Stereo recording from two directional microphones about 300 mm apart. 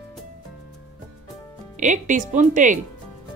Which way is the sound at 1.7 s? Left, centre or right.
Right.